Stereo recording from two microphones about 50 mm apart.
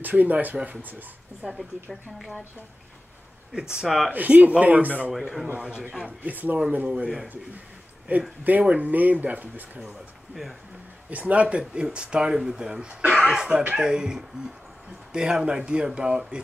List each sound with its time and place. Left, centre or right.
0.0 s speech: right
1.4 s speech: centre
3.8 s speech: centre
4.1 s speech: right
5.2 s speech: centre
5.6 s speech: centre
6.0 s speech: right
8.1 s speech: right
11.1 s speech: right; by 16.3 s centre